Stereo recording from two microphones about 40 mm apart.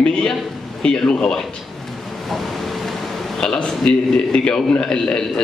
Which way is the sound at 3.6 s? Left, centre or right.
Left.